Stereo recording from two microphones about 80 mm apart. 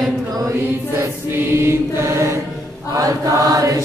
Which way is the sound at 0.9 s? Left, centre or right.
Right.